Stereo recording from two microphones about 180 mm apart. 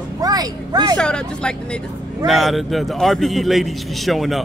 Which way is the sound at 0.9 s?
5° left (ahead or behind).